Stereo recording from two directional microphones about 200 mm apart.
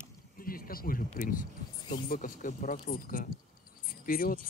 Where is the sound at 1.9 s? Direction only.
40° left (ahead or behind).